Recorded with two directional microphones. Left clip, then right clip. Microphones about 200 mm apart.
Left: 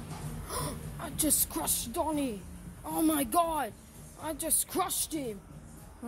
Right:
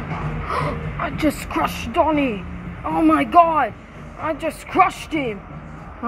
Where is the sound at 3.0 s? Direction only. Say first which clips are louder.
Right 14 dB; 80° left.